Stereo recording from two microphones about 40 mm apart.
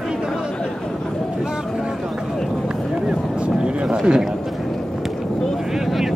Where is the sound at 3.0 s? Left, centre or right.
Right.